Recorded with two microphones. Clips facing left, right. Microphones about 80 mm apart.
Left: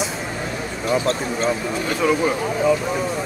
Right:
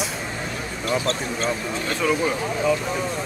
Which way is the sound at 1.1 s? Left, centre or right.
Centre.